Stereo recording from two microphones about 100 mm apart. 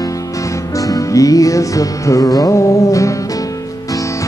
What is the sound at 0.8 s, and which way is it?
Music, 35° left (ahead or behind).